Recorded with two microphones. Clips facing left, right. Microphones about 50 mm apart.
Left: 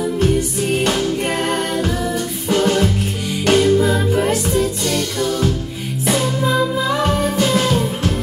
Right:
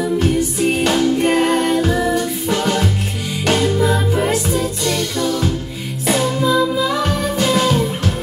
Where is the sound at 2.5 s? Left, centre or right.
Right.